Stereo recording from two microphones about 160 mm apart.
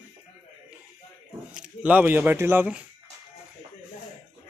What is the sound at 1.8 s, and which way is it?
Speech, 10° right (ahead or behind).